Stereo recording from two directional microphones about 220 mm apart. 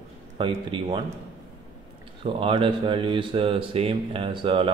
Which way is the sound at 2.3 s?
25° right (ahead or behind).